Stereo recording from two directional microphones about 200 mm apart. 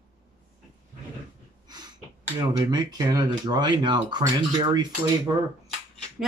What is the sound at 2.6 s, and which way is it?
Speech, 20° right (ahead or behind).